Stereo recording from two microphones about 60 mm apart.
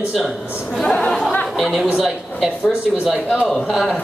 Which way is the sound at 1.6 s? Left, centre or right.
Centre.